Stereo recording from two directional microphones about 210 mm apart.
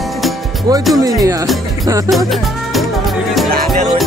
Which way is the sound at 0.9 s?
15° right (ahead or behind).